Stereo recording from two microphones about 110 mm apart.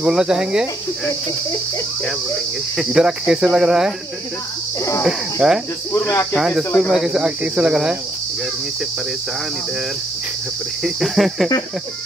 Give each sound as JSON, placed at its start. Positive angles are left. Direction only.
{"t": 0.0, "sound": "speech", "side_deg": -5}
{"t": 2.8, "sound": "speech", "side_deg": -5}
{"t": 5.0, "sound": "speech", "side_deg": -5}
{"t": 5.9, "sound": "speech", "side_deg": 25}
{"t": 6.3, "sound": "speech", "side_deg": -5}
{"t": 10.8, "sound": "speech", "side_deg": 0}